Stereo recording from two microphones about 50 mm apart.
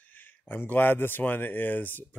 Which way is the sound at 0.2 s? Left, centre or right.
Left.